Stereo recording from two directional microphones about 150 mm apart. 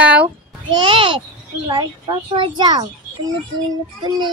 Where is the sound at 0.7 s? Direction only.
35° right (ahead or behind).